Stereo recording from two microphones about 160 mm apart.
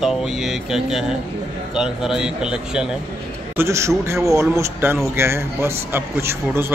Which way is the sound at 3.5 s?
20° right (ahead or behind).